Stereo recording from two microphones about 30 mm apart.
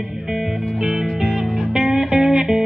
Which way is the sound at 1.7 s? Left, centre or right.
Centre.